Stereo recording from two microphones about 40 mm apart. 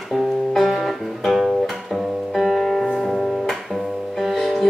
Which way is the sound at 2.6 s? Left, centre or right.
Centre.